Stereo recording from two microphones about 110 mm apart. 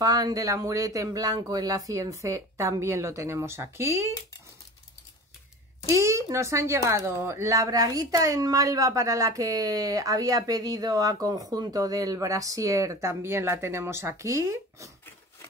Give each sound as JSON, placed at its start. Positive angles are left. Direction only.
{"t": 0.0, "sound": "speech", "side_deg": -35}
{"t": 5.9, "sound": "speech", "side_deg": -25}